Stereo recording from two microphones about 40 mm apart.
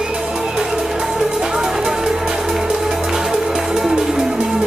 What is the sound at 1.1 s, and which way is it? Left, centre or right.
Music, centre.